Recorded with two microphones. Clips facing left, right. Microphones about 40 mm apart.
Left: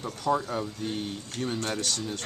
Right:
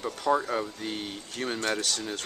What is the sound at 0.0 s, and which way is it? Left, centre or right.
Speech, right.